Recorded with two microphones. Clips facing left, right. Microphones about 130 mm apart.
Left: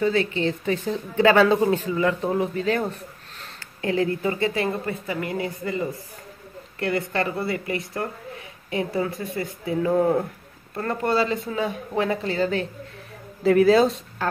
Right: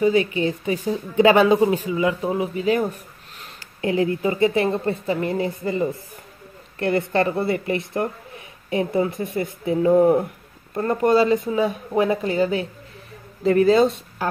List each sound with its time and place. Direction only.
0.0 s a woman's voice: 15° right (ahead or behind)
13.4 s speech: centre (ahead or behind)